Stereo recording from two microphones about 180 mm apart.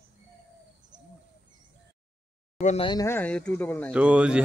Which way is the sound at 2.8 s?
15° left (ahead or behind).